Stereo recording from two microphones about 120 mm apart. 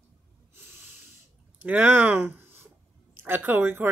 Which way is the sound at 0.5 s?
20° right (ahead or behind).